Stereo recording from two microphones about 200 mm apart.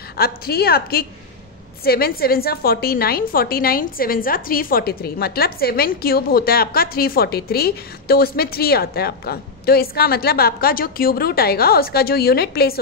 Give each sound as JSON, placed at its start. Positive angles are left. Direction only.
{"t": 0.2, "sound": "a woman's voice", "side_deg": 50}